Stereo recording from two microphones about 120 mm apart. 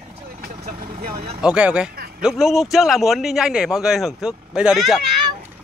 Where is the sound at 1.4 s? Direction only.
10° right (ahead or behind).